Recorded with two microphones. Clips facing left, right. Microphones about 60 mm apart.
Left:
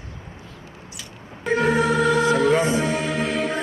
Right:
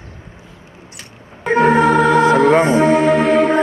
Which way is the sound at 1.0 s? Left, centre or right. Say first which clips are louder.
Right 6 dB; right.